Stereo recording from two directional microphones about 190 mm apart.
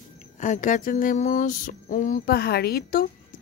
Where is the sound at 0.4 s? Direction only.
40° left (ahead or behind).